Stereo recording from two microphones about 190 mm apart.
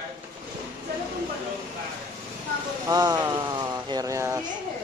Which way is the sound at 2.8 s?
20° right (ahead or behind).